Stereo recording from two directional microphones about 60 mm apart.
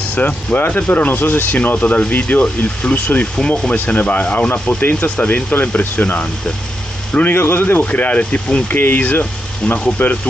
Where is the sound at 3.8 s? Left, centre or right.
Left.